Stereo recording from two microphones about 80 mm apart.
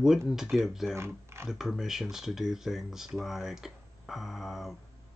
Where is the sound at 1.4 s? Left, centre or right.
Centre.